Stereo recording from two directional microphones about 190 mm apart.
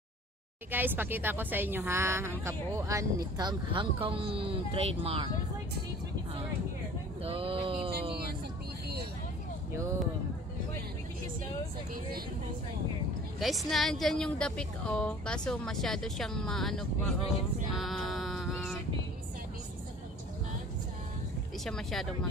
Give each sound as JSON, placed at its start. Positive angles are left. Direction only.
{"t": 0.7, "sound": "speech", "side_deg": -10}
{"t": 7.2, "sound": "mantra", "side_deg": -30}
{"t": 13.4, "sound": "a woman's voice", "side_deg": 0}
{"t": 17.7, "sound": "music", "side_deg": 0}
{"t": 21.6, "sound": "a woman's voice", "side_deg": 5}